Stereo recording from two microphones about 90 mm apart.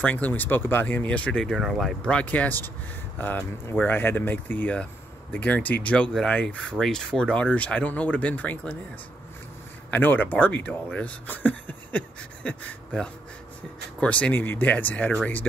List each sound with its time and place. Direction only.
0.0 s speech: 15° left (ahead or behind); by 2.0 s centre (ahead or behind)
2.0 s speech: 15° left (ahead or behind)
9.8 s speech: 20° left (ahead or behind)